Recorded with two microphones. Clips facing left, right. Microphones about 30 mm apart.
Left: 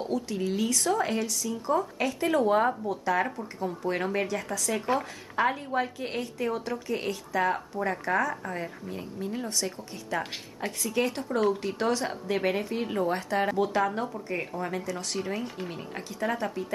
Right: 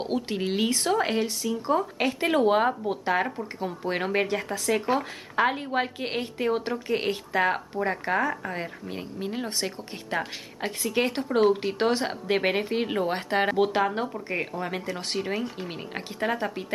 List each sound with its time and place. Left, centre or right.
0.0 s speech: right